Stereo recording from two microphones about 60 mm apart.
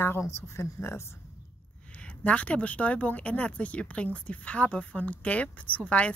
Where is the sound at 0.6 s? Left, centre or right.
Left.